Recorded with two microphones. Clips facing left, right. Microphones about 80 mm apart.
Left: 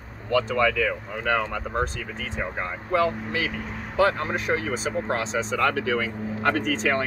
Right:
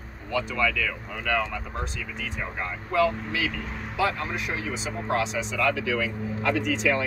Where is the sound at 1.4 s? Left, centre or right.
Left.